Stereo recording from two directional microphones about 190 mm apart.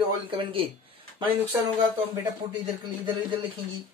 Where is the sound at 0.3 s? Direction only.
30° right (ahead or behind).